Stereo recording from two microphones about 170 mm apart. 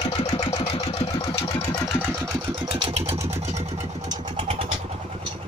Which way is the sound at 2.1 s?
20° right (ahead or behind).